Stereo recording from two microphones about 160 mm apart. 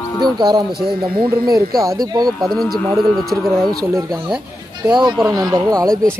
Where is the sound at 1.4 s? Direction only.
20° right (ahead or behind).